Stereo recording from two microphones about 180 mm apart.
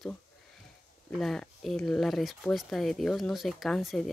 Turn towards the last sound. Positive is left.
turn(degrees=0)  # may be behind; listen again after turning